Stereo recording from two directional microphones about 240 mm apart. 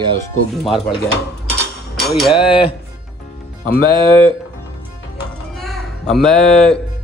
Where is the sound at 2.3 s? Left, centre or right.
Left.